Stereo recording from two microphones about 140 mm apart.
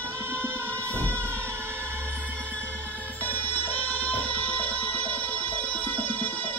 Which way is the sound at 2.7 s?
15° right (ahead or behind).